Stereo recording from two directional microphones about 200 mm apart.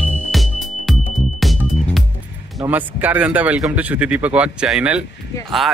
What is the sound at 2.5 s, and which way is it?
A man's voice, 10° right (ahead or behind).